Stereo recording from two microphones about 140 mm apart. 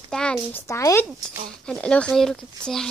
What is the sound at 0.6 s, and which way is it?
Speech, 20° left (ahead or behind).